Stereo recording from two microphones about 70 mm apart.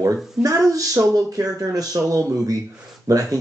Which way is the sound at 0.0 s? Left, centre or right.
Right.